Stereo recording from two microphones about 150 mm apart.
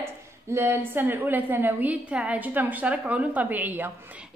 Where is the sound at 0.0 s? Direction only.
15° right (ahead or behind).